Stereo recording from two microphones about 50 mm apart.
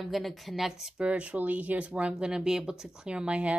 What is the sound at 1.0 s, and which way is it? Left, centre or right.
Speech, right.